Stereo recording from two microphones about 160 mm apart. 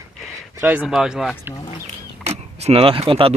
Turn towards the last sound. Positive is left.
turn(degrees=-35)  # may be behind; listen again after turning